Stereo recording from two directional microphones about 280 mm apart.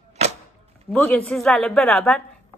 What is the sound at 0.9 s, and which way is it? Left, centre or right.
Speech, centre.